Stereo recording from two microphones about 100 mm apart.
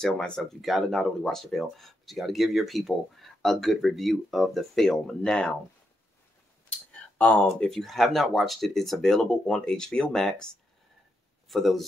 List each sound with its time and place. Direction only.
0.4 s speech: centre (ahead or behind)
7.2 s speech: 10° left (ahead or behind)